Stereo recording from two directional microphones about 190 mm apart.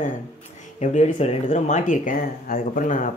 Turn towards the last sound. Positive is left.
turn(degrees=45)  # may be behind; listen again after turning